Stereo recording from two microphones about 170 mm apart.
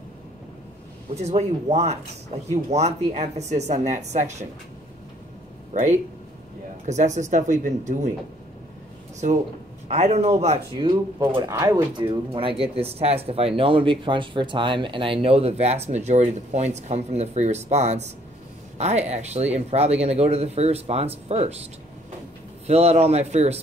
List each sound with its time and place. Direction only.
1.1 s speech: 40° right (ahead or behind)
5.7 s speech: 45° right (ahead or behind)
9.8 s speech: 40° right (ahead or behind)
22.7 s speech: 40° right (ahead or behind)